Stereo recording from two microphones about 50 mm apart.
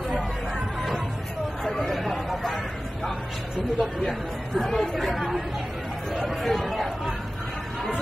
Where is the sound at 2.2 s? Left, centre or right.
Centre.